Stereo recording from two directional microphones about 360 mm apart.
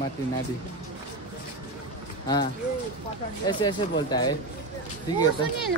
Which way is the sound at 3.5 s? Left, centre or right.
Centre.